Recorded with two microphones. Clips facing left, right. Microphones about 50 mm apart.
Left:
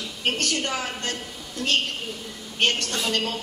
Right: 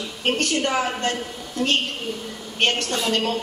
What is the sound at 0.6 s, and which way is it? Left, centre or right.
A woman's voice, centre.